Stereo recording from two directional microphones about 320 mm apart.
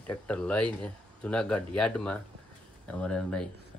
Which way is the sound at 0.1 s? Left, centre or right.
Centre.